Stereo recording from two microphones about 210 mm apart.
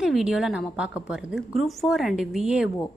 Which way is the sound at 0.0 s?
Centre (ahead or behind).